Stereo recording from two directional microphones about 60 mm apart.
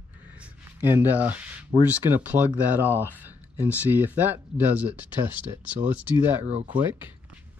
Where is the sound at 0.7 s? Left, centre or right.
Right.